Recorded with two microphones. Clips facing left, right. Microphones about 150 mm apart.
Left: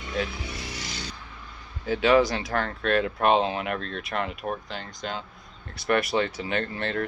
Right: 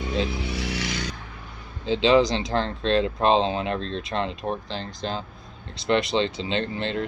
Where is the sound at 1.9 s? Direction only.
25° right (ahead or behind).